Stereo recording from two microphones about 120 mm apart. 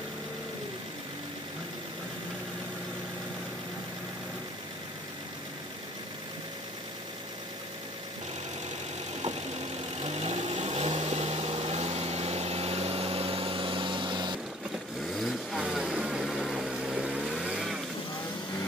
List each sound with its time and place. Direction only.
10.0 s vehicle: 65° right (ahead or behind); by 14.4 s 40° right (ahead or behind)
15.1 s vehicle: centre (ahead or behind)